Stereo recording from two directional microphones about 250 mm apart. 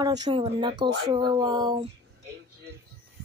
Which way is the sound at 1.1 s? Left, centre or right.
Centre.